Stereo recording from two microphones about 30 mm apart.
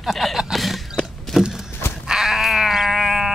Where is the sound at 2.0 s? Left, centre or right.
Centre.